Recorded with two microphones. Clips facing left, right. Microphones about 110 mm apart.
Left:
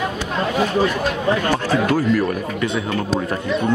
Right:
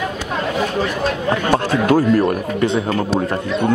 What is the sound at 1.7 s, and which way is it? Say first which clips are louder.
Speech: right 3 dB; 40° right (ahead or behind).